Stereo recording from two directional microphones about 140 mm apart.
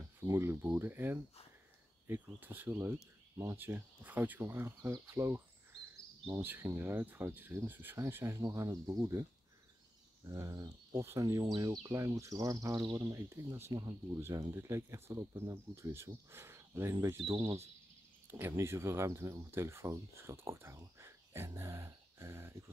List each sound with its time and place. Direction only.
0.0 s speech: 15° right (ahead or behind)
10.2 s speech: 25° right (ahead or behind)